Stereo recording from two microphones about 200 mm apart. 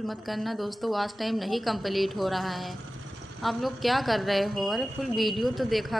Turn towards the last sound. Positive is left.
turn(degrees=0)  # may be behind; listen again after turning